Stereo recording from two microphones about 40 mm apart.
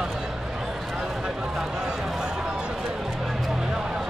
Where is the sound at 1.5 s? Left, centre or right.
Centre.